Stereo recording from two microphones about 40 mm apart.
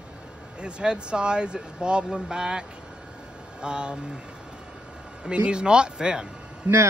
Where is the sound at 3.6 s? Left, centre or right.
Right.